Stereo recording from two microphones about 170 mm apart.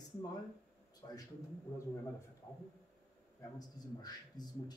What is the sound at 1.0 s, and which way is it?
Speech, 25° left (ahead or behind).